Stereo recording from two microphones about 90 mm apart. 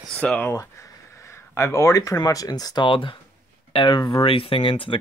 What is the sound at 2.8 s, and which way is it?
Speech, 70° left (ahead or behind).